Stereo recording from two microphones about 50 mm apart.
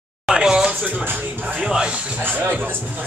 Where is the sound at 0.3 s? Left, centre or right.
Centre.